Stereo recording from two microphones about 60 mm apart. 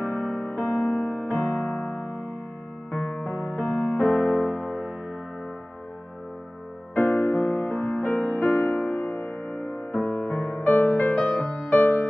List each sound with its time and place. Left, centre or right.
0.0 s music: left
3.3 s music: left
7.0 s music: left